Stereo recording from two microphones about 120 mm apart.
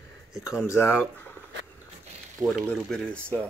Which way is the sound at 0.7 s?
20° left (ahead or behind).